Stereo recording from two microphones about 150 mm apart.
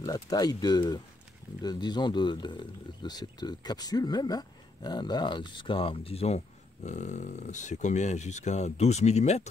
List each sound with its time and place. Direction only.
0.0 s speech: 25° left (ahead or behind); by 9.5 s 50° left (ahead or behind)